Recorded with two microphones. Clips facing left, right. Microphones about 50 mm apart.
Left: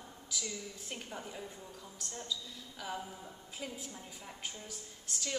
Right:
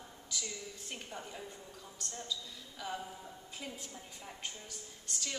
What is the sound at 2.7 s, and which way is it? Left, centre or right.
A woman's voice, centre.